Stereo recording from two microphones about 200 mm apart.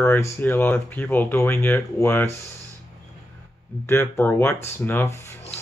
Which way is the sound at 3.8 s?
10° left (ahead or behind).